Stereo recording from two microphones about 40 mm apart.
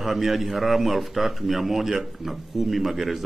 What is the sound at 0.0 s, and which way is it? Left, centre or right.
A man's voice, centre.